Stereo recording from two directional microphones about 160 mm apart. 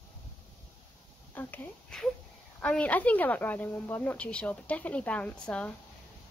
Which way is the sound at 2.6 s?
10° left (ahead or behind).